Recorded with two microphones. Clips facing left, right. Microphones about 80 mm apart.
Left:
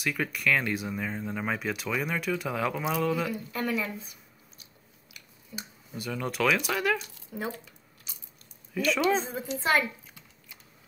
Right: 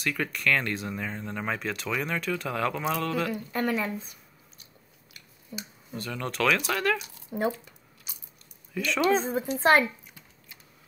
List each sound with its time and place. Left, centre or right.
0.0 s speech: centre
3.5 s speech: right
5.5 s speech: right
5.9 s speech: centre
7.2 s speech: right
8.1 s biting: centre
8.7 s speech: centre
9.6 s speech: right